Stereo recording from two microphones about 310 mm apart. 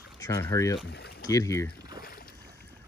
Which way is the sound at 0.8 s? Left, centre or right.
Left.